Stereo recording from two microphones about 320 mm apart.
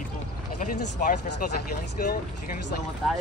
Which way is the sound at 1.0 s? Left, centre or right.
Left.